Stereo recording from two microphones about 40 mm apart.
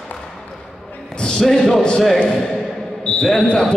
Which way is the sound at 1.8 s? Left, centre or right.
Left.